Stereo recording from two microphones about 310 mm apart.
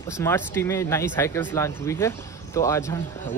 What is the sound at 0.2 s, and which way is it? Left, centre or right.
Speech, centre.